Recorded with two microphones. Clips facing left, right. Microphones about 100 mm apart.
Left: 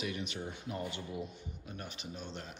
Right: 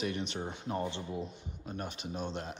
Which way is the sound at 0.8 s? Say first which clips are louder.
Right 4 dB; 25° right (ahead or behind).